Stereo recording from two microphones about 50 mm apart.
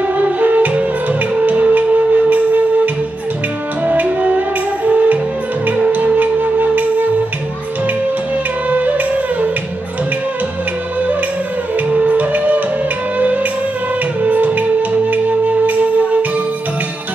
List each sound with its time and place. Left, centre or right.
0.0 s music: right
8.6 s music: right
11.9 s music: right